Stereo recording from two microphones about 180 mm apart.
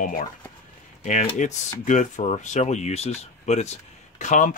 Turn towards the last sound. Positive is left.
turn(degrees=45)  # may be behind; listen again after turning